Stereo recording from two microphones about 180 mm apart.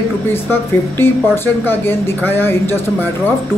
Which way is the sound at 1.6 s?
10° left (ahead or behind).